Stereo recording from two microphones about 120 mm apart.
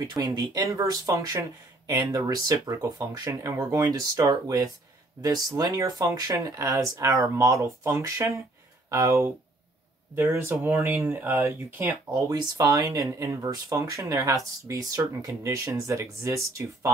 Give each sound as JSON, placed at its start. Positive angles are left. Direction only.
{"t": 0.0, "sound": "speech", "side_deg": -30}